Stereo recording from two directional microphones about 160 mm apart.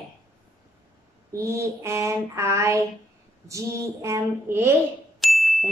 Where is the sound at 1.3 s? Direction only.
20° right (ahead or behind).